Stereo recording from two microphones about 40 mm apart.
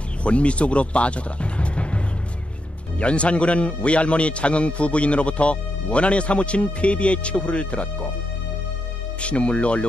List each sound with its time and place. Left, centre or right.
0.2 s speech: left
3.0 s speech: left
9.2 s speech: left